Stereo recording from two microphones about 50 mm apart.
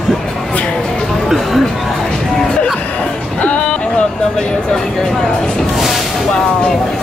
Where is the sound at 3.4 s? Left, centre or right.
Left.